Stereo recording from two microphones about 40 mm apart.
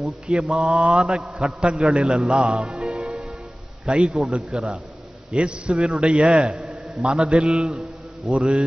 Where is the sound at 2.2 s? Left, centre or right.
Right.